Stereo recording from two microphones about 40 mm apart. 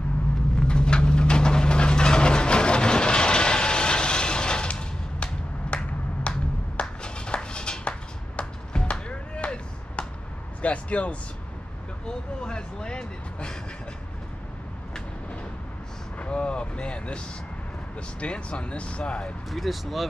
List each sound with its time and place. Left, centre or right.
0.6 s vehicle: left
6.8 s a sound: left
12.4 s vehicle: left
16.2 s vehicle: left
18.2 s speech: left
19.5 s speech: centre